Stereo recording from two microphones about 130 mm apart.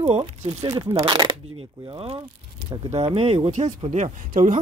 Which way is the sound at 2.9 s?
50° right (ahead or behind).